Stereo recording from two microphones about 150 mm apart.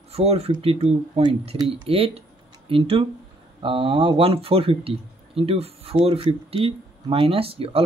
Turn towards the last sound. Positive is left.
turn(degrees=-40)  # may be behind; listen again after turning